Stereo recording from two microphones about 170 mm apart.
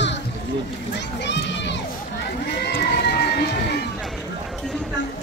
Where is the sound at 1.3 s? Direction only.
90° left.